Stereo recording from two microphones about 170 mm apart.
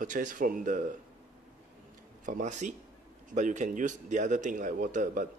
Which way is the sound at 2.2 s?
45° right (ahead or behind).